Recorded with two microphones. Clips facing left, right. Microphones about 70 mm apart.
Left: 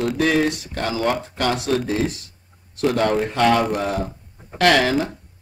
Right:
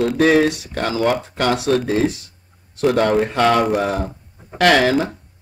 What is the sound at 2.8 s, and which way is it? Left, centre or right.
A man's voice, right.